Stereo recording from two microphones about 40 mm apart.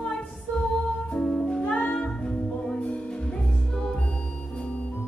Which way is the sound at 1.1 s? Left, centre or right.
Centre.